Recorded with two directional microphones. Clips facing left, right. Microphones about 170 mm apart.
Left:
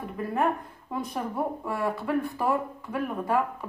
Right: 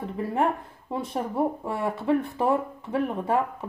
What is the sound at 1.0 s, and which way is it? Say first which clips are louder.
Speech: right 4 dB; 25° right (ahead or behind).